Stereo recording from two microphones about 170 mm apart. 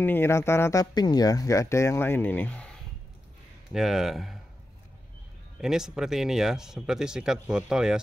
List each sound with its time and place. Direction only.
0.0 s speech: 15° left (ahead or behind)
3.7 s speech: centre (ahead or behind)
5.6 s speech: 5° right (ahead or behind)